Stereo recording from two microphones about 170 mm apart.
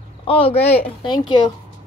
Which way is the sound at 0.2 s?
35° left (ahead or behind).